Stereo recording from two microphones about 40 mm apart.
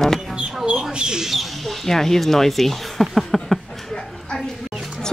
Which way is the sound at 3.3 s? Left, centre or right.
Centre.